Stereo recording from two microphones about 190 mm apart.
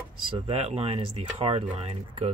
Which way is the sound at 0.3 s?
30° right (ahead or behind).